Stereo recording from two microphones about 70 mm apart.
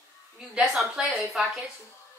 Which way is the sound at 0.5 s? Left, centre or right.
Centre.